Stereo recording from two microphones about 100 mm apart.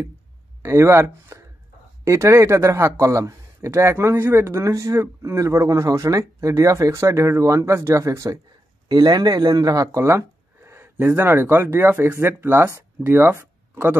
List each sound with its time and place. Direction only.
0.6 s a man's voice: 25° right (ahead or behind)
8.8 s speech: 40° right (ahead or behind); by 13.9 s 25° right (ahead or behind)